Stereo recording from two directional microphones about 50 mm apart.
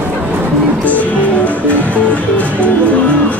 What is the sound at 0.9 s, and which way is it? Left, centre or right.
Music, left.